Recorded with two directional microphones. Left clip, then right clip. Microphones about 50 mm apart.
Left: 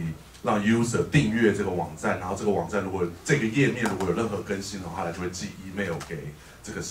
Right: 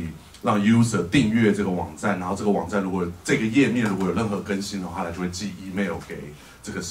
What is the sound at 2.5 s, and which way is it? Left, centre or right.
Speech, right.